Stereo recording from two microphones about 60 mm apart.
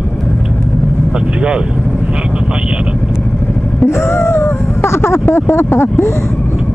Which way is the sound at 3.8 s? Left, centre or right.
Left.